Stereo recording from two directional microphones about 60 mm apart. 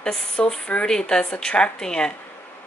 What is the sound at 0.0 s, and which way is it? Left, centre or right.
Speech, centre.